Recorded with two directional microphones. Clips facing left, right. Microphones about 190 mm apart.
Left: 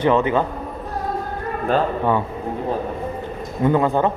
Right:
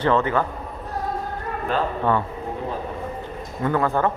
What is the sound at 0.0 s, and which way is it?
Speech, 15° left (ahead or behind).